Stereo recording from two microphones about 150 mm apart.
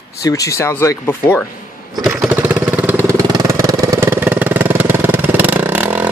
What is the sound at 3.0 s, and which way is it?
Vehicle, 25° right (ahead or behind).